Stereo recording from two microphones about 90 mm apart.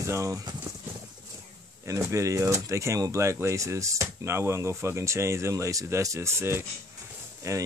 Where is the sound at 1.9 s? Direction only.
35° right (ahead or behind).